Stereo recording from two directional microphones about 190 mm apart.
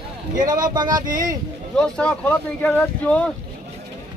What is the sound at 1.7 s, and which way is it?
Speech, 5° left (ahead or behind).